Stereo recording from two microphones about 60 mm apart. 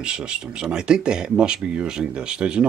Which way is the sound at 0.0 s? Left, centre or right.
Centre.